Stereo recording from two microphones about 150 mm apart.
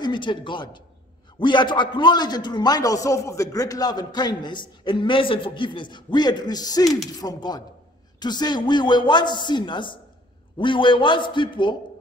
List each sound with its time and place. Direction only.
0.0 s a man's voice: 30° left (ahead or behind)